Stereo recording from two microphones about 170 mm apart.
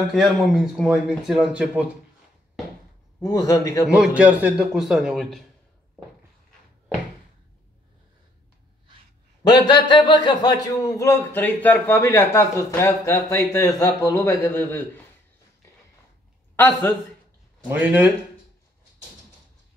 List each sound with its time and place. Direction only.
0.0 s speech: centre (ahead or behind)
3.2 s a man's voice: 20° left (ahead or behind)
3.8 s speech: 5° right (ahead or behind)
9.5 s speech: 25° left (ahead or behind)
16.5 s a man's voice: 10° left (ahead or behind)
17.6 s speech: 10° right (ahead or behind)